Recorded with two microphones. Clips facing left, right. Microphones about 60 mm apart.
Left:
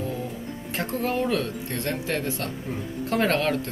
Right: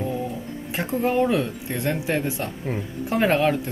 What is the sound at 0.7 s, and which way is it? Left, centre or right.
Speech, centre.